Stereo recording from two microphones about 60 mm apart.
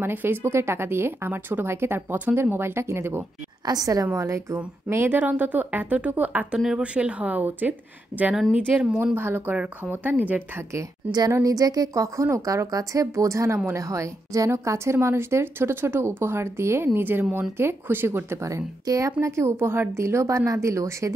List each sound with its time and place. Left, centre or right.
0.0 s a woman's voice: right
3.6 s a woman's voice: right
4.1 s a woman's voice: right
4.8 s speech: right
5.2 s speech: right
9.0 s speech: right
9.6 s speech: right
10.7 s speech: right
14.5 s a woman's voice: right
18.4 s speech: right
19.2 s a woman's voice: right